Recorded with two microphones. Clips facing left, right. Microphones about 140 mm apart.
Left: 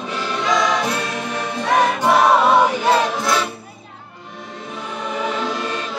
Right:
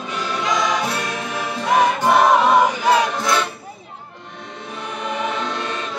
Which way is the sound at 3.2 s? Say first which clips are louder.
Even; 5° left (ahead or behind).